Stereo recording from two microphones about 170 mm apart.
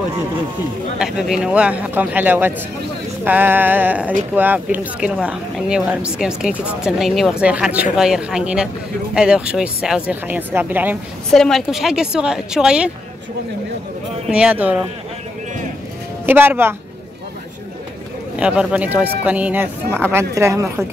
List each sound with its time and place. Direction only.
0.9 s speech: 5° right (ahead or behind)
11.3 s a woman's voice: centre (ahead or behind)
14.3 s speech: 5° right (ahead or behind)
16.3 s speech: 10° right (ahead or behind)
18.3 s speech: 5° right (ahead or behind)